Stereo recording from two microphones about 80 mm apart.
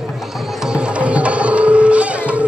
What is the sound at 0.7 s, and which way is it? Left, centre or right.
Music, centre.